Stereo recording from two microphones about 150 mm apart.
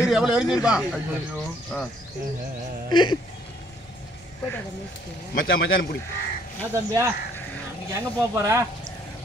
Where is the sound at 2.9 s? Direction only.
30° left (ahead or behind).